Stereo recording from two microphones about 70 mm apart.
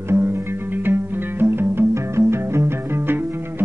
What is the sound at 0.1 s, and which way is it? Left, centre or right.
Music, right.